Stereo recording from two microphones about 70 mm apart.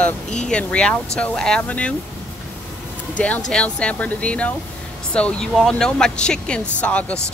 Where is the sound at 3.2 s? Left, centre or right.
Centre.